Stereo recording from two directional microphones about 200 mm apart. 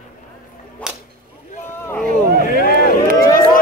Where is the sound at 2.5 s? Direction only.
45° left (ahead or behind).